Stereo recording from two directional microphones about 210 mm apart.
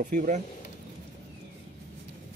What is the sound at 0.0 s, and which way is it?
Speech, 35° right (ahead or behind).